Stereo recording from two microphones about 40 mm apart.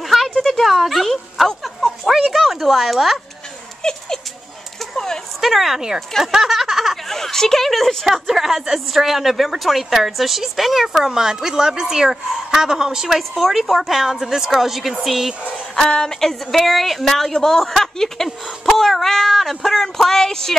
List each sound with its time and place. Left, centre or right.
0.0 s a sound: centre
0.4 s speech: centre
3.8 s dog: centre
4.9 s a sound: centre
5.4 s speech: centre
7.1 s a woman's voice: centre
13.4 s a woman's voice: centre
15.9 s speech: centre